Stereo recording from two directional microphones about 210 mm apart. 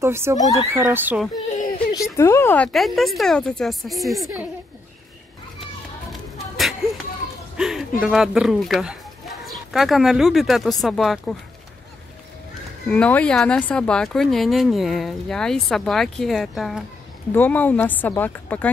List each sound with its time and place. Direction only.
0.0 s speech: 10° right (ahead or behind)
0.4 s speech: 15° left (ahead or behind)
0.7 s speech: 10° right (ahead or behind)
2.0 s speech: 15° left (ahead or behind)
6.3 s a sound: centre (ahead or behind)
8.0 s speech: centre (ahead or behind)
12.9 s speech: 5° left (ahead or behind)